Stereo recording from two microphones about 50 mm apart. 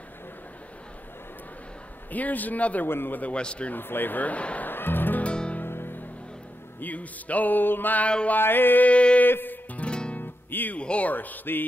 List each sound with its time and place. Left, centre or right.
2.1 s music: left
2.9 s music: left
3.2 s a man's voice: left
3.7 s music: left
4.6 s music: left
5.2 s music: left
5.6 s music: left
6.8 s music: left
8.8 s a man's voice: left
9.2 s music: left
9.8 s guitar: left
10.1 s music: left
10.8 s music: left